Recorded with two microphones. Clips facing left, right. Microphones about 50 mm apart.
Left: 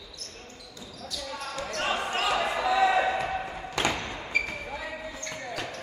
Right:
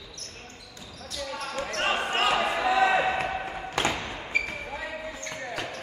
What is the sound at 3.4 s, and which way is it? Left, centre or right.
Basketball bounce, centre.